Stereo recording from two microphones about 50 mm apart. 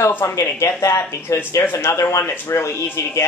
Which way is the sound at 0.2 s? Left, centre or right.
Left.